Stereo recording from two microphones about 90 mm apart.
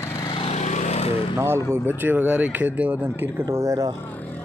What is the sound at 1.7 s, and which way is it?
Speech, 20° right (ahead or behind).